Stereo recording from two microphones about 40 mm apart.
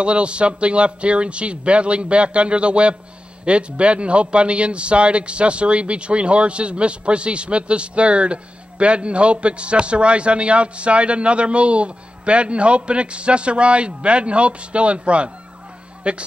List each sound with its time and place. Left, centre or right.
0.0 s a man's voice: right